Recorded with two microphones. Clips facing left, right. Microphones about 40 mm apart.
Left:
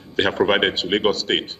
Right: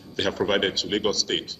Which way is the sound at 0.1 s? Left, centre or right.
Left.